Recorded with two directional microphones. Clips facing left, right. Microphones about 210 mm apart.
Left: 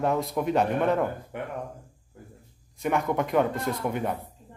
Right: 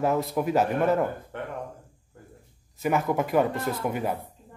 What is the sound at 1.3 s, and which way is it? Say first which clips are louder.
Speech: left 1 dB; 10° left (ahead or behind).